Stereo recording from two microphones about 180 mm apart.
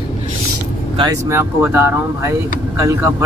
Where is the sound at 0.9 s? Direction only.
25° right (ahead or behind).